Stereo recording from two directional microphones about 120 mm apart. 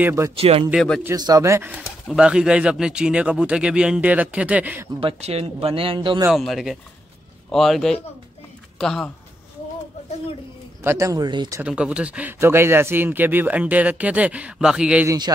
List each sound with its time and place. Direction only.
0.0 s speech: 25° right (ahead or behind)
0.4 s speech: 55° right (ahead or behind)
1.1 s speech: 30° right (ahead or behind)
2.0 s speech: 5° right (ahead or behind)
5.0 s speech: 60° right (ahead or behind); by 6.2 s 45° right (ahead or behind)
6.3 s speech: centre (ahead or behind)
10.8 s speech: 25° right (ahead or behind)
11.6 s speech: 10° right (ahead or behind)
15.0 s a man's voice: 35° right (ahead or behind)